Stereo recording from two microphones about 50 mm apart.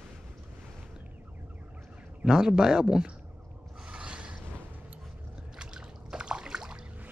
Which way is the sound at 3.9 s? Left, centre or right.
Centre.